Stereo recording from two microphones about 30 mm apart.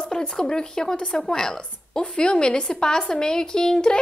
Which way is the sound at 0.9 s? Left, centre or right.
Left.